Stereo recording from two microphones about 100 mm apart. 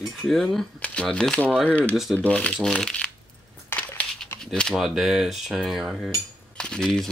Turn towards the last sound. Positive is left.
turn(degrees=5)  # may be behind; listen again after turning